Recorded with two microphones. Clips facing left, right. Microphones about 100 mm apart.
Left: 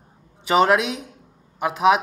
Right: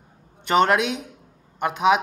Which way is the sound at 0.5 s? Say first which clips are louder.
Left 1 dB; 5° left (ahead or behind).